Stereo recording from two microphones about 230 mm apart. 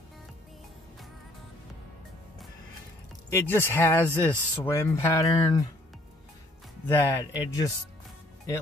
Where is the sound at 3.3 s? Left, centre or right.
Centre.